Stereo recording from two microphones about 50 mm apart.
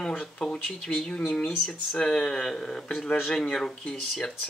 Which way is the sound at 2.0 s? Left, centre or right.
Centre.